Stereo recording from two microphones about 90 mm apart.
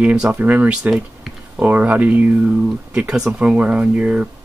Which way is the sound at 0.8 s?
5° right (ahead or behind).